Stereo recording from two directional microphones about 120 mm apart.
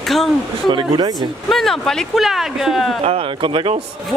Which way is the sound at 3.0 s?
55° right (ahead or behind).